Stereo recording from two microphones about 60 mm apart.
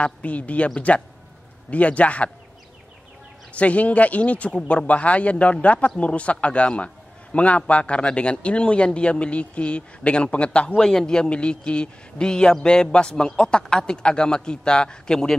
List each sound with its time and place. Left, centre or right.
0.0 s speech: left
3.5 s speech: left
10.8 s a man's voice: centre